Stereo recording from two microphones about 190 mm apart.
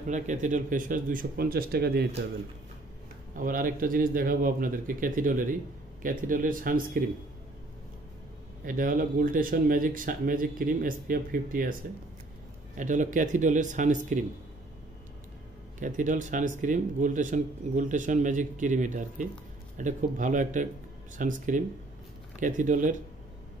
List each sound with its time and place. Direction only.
0.1 s speech: 40° right (ahead or behind); by 2.2 s 60° right (ahead or behind)
3.3 s speech: 45° right (ahead or behind)
8.6 s speech: 45° right (ahead or behind)
12.7 s a man's voice: 40° right (ahead or behind)
15.8 s a man's voice: 40° right (ahead or behind)